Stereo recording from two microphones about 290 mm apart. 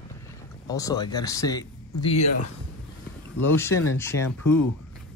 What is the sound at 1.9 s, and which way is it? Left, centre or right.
Speech, left.